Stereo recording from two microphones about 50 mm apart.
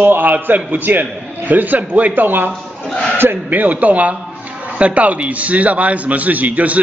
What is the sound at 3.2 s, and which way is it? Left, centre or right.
A man's voice, right.